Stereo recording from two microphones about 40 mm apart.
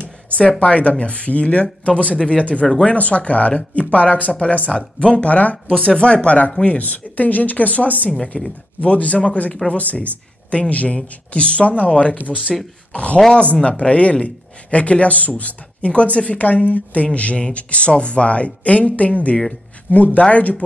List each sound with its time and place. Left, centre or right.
0.4 s speech: left
5.9 s speech: left